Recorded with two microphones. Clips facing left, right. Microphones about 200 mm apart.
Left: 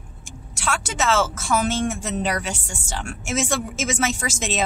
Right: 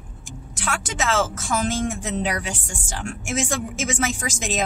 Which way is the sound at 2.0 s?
15° right (ahead or behind).